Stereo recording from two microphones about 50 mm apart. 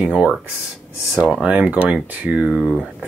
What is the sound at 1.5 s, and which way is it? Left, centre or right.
Speech, right.